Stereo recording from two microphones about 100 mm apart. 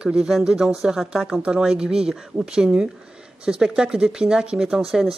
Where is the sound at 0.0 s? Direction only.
5° right (ahead or behind).